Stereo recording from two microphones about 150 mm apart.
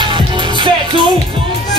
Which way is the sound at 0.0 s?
30° right (ahead or behind).